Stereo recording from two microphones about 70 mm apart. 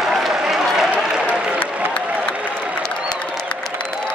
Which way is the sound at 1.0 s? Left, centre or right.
Centre.